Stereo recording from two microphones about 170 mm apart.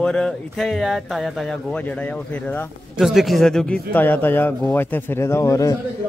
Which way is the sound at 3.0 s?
Centre (ahead or behind).